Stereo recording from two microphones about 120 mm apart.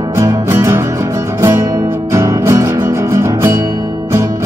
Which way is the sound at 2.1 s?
25° right (ahead or behind).